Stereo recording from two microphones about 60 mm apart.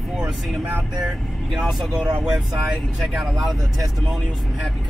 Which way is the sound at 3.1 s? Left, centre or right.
Centre.